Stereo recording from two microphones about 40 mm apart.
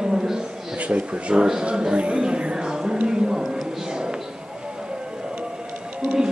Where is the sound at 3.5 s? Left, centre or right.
Centre.